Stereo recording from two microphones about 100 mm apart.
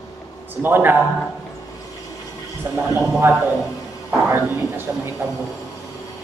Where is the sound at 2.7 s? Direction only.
25° right (ahead or behind).